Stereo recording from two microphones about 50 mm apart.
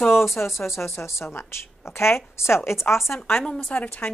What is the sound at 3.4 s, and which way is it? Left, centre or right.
Speech, left.